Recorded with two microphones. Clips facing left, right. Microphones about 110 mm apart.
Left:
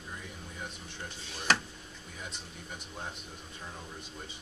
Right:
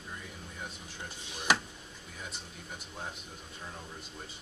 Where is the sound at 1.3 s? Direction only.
15° right (ahead or behind).